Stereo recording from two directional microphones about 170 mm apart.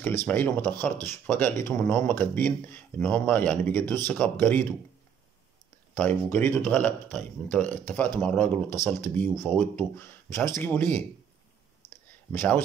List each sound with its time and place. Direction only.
0.2 s speech: 10° left (ahead or behind)
5.9 s speech: 10° left (ahead or behind)
7.6 s speech: 45° right (ahead or behind)
7.9 s speech: 10° left (ahead or behind)
12.3 s speech: 10° left (ahead or behind)